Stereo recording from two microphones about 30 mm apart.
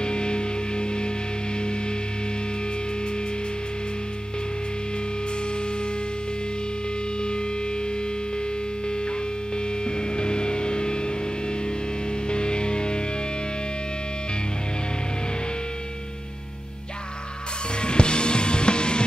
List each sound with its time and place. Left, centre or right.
0.0 s music: left
9.8 s music: left
12.3 s music: left
17.8 s music: left